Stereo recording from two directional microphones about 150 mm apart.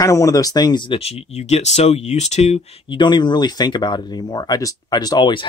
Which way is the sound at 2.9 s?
30° left (ahead or behind).